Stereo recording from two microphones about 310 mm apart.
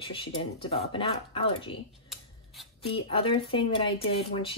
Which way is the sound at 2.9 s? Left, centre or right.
Centre.